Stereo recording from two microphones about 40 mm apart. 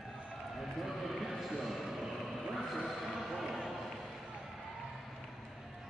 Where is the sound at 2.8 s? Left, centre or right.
Centre.